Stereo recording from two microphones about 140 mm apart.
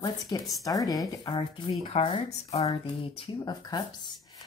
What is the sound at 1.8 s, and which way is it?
Speech, 45° left (ahead or behind).